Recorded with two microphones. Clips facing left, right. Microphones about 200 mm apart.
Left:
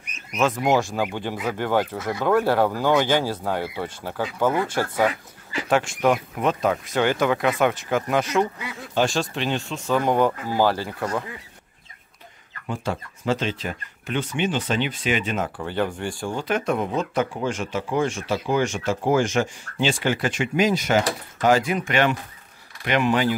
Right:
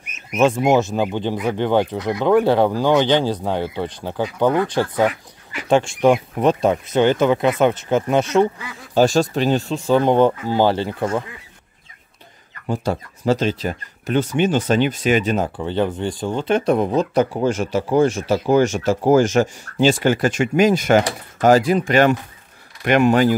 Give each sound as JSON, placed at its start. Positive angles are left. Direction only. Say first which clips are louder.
{"t": 0.4, "sound": "speech", "louder": "right 5 dB", "side_deg": -25}
{"t": 5.7, "sound": "speech", "louder": "right 5 dB", "side_deg": -25}
{"t": 8.9, "sound": "speech", "louder": "right 7 dB", "side_deg": -40}
{"t": 12.6, "sound": "speech", "louder": "right 6 dB", "side_deg": -35}
{"t": 15.5, "sound": "speech", "louder": "right 5 dB", "side_deg": -20}